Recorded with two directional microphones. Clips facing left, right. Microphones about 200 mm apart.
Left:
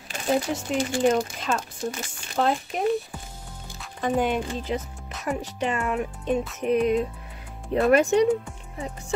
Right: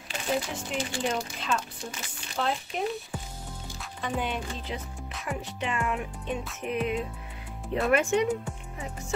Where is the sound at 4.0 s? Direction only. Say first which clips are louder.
Left 8 dB; 45° left (ahead or behind).